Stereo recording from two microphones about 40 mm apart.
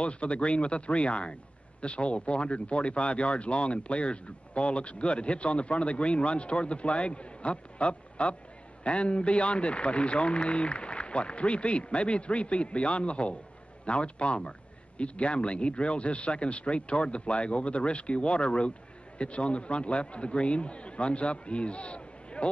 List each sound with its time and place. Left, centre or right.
0.0 s speech: left